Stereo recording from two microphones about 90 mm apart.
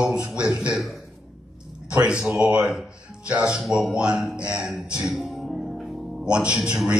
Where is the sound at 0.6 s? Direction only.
10° right (ahead or behind).